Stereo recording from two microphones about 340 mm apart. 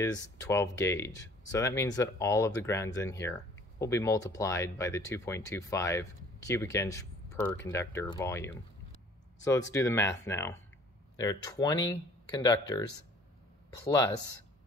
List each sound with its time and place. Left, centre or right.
0.0 s speech: centre